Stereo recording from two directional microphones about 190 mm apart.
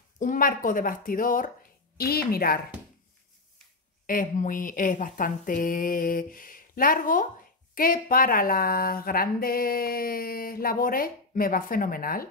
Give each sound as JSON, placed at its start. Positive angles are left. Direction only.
{"t": 0.2, "sound": "speech", "side_deg": 45}
{"t": 4.0, "sound": "speech", "side_deg": 45}